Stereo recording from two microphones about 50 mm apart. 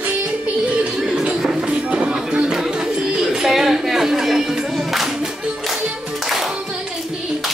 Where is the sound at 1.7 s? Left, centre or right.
Right.